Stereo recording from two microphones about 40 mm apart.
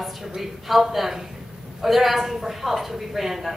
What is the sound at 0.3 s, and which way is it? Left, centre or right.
A woman's voice, centre.